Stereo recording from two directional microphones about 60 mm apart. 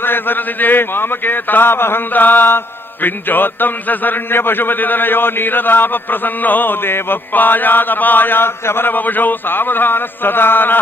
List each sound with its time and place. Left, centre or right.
0.0 s a man's voice: left